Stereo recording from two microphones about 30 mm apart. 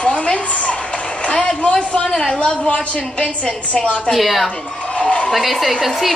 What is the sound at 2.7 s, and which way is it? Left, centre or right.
Speech, left.